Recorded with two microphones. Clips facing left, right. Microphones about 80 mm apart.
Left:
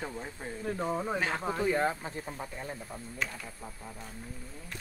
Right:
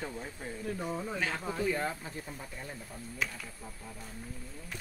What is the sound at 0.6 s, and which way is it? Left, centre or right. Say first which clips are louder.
Speech: left 4 dB; left.